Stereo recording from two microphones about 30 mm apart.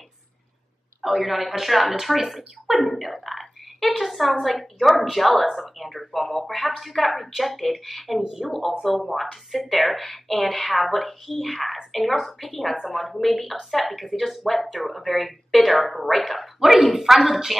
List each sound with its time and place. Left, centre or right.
1.0 s a woman's voice: centre
8.2 s a woman's voice: centre
16.6 s speech: centre